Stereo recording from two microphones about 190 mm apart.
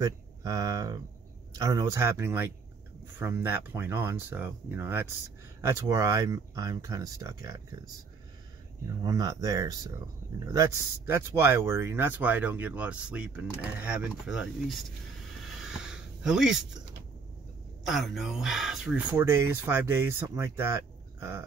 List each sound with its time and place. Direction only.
0.0 s speech: 20° right (ahead or behind)
8.8 s speech: 20° right (ahead or behind); by 14.9 s centre (ahead or behind)
15.4 s a sound: 5° right (ahead or behind)
17.8 s speech: centre (ahead or behind)
19.1 s speech: 15° right (ahead or behind)